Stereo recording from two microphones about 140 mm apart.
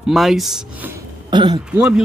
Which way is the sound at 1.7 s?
10° right (ahead or behind).